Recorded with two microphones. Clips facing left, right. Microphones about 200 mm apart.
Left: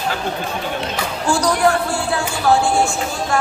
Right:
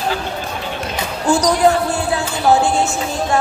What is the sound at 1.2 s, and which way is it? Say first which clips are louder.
Music: right 3 dB; 20° right (ahead or behind).